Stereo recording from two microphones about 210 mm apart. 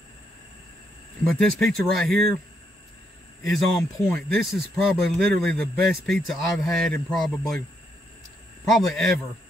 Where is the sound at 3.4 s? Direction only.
Centre (ahead or behind).